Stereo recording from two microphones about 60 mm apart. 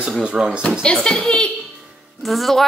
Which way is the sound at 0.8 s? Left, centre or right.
Centre.